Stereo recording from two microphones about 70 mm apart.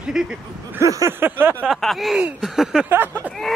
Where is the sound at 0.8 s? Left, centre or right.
Right.